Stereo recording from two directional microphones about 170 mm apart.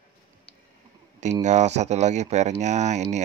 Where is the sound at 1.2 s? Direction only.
45° right (ahead or behind).